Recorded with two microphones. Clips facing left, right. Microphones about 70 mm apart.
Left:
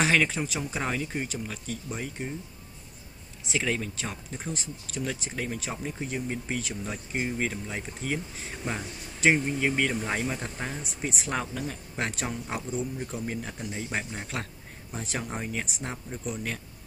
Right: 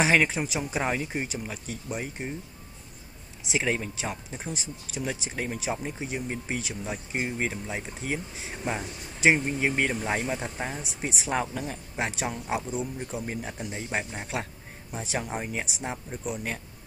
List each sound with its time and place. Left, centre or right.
0.0 s speech: centre
3.4 s speech: centre